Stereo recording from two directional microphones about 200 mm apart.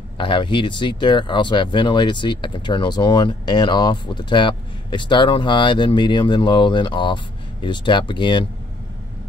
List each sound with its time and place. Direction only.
0.2 s speech: 25° left (ahead or behind)